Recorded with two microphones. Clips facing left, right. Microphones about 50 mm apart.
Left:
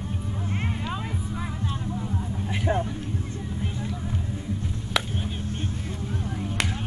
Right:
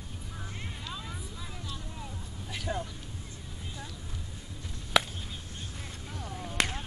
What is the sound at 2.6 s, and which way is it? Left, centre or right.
Speech, left.